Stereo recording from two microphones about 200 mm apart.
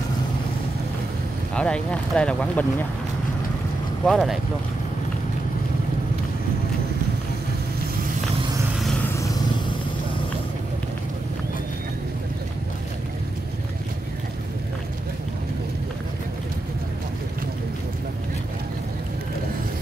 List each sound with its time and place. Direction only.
1.5 s speech: 5° left (ahead or behind)
4.0 s speech: centre (ahead or behind)
9.1 s vehicle: 15° left (ahead or behind)